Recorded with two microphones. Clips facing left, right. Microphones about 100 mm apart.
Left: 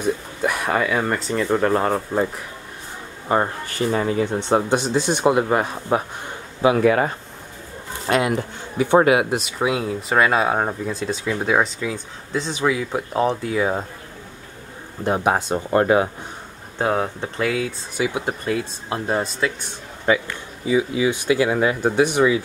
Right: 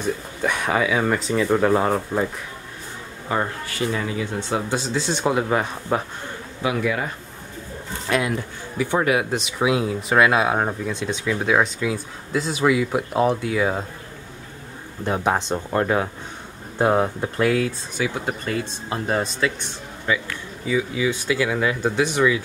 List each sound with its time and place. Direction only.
0.0 s speech: 5° left (ahead or behind)
3.3 s speech: 35° left (ahead or behind)
4.9 s speech: 15° left (ahead or behind)
5.3 s speech: 5° left (ahead or behind)
6.8 s speech: 50° left (ahead or behind)
8.1 s speech: 30° left (ahead or behind)
9.3 s speech: centre (ahead or behind)
15.0 s speech: 10° left (ahead or behind)
16.7 s speech: 10° right (ahead or behind)
17.5 s speech: 5° left (ahead or behind)
20.6 s speech: 30° left (ahead or behind)